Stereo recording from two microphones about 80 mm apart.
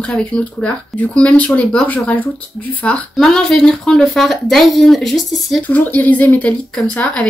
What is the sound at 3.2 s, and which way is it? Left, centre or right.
Speech, centre.